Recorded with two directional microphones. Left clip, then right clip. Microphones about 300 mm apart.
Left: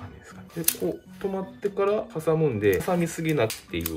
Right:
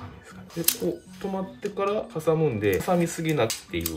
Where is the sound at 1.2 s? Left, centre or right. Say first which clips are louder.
Left 2 dB; centre.